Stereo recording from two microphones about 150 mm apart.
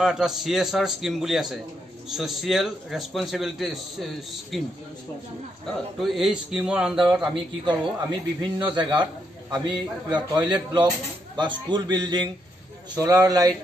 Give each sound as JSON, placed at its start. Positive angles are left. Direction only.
{"t": 0.0, "sound": "a man's voice", "side_deg": -5}
{"t": 5.7, "sound": "a man's voice", "side_deg": 0}
{"t": 7.6, "sound": "a man's voice", "side_deg": -30}